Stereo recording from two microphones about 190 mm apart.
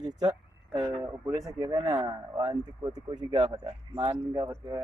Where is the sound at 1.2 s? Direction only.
15° right (ahead or behind).